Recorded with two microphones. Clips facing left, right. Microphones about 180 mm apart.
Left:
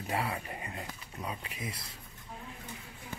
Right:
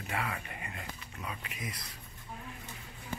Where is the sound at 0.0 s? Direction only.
35° left (ahead or behind).